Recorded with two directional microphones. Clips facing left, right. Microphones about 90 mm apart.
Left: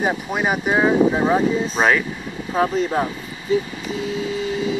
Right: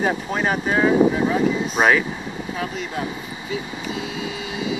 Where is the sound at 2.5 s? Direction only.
45° left (ahead or behind).